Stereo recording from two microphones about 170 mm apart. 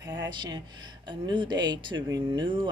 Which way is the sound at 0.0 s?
20° right (ahead or behind).